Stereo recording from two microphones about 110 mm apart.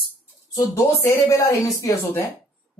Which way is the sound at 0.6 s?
25° left (ahead or behind).